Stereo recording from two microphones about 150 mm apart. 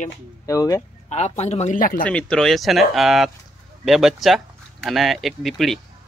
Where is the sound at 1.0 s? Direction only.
50° left (ahead or behind).